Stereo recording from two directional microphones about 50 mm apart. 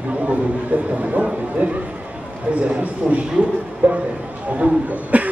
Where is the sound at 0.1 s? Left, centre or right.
Right.